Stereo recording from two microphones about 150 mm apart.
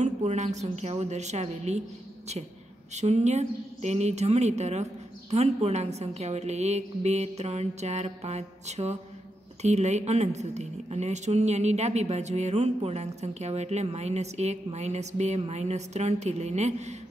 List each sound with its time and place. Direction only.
0.0 s a woman's voice: 50° right (ahead or behind)
2.9 s a woman's voice: 50° right (ahead or behind)